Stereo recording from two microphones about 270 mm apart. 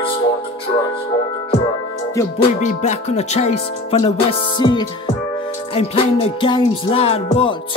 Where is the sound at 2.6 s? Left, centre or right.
Left.